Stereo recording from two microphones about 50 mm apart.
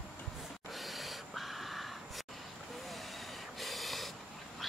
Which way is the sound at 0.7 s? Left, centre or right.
Centre.